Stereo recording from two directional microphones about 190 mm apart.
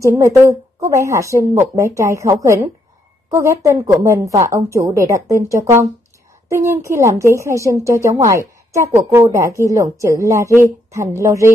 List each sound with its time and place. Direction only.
0.0 s a woman's voice: 15° right (ahead or behind)